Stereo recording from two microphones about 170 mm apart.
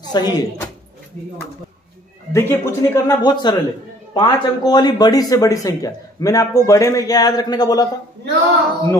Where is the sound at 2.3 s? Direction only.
15° left (ahead or behind).